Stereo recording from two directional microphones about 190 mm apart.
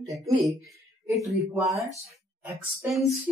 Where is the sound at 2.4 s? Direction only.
10° right (ahead or behind).